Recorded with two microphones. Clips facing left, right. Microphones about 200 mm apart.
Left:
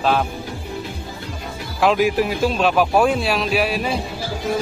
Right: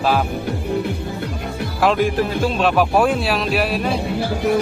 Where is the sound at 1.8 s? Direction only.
5° left (ahead or behind).